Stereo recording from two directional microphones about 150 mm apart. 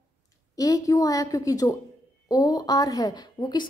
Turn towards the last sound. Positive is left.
turn(degrees=25)  # may be behind; listen again after turning